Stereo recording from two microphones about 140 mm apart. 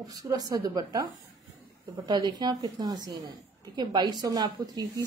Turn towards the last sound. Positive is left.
turn(degrees=-30)  # may be behind; listen again after turning